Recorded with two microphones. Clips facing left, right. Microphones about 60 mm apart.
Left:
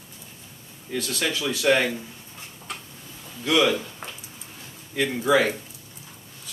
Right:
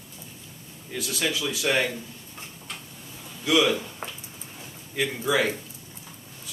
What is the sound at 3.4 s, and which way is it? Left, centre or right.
Speech, centre.